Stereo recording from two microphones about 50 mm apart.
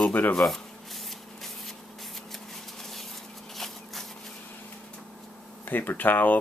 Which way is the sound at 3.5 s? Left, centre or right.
Centre.